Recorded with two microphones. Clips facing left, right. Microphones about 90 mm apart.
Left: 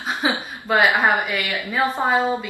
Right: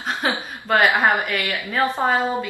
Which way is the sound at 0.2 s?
5° left (ahead or behind).